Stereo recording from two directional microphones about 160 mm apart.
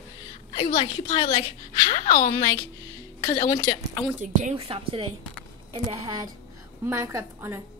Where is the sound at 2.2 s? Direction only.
20° left (ahead or behind).